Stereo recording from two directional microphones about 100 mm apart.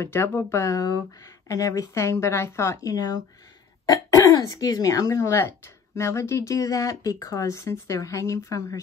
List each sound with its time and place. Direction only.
0.0 s speech: 25° left (ahead or behind)